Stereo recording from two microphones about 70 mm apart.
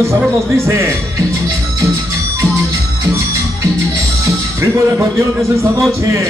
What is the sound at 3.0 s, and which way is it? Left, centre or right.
Music, right.